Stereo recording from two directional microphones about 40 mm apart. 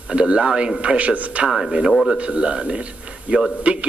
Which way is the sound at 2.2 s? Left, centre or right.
Right.